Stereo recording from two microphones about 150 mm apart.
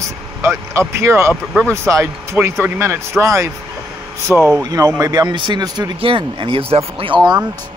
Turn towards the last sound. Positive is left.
turn(degrees=-30)  # may be behind; listen again after turning